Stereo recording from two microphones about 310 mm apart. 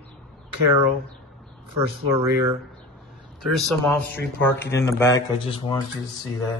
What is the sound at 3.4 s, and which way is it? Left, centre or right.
Speech, centre.